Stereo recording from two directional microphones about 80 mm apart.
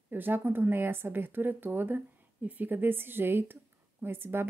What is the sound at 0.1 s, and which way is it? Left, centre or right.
Speech, right.